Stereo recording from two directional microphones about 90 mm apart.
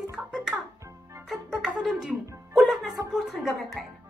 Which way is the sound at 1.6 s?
5° right (ahead or behind).